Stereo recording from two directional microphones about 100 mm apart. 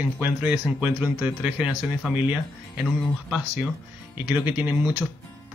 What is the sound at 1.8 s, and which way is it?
Speech, 5° right (ahead or behind).